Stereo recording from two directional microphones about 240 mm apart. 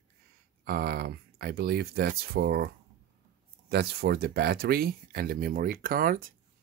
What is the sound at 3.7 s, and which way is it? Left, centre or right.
Speech, right.